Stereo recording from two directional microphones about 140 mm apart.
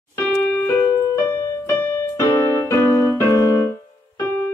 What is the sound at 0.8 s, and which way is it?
Keyboard, 20° left (ahead or behind).